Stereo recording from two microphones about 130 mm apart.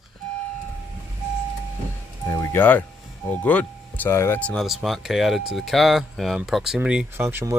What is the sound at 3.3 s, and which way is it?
Speech, 10° left (ahead or behind).